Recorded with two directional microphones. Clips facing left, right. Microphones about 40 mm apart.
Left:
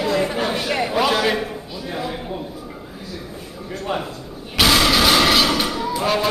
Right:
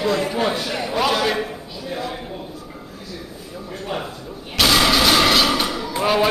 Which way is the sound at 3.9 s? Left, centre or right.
Centre.